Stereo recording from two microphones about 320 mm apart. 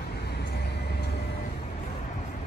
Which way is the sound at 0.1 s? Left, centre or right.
Left.